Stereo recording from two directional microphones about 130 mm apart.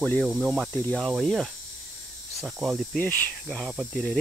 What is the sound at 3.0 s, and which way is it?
Cricket, 10° left (ahead or behind).